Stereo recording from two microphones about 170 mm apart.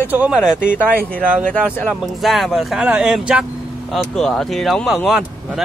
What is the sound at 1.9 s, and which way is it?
Speech, centre (ahead or behind).